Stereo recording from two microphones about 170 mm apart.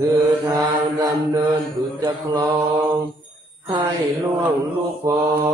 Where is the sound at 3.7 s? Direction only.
25° right (ahead or behind).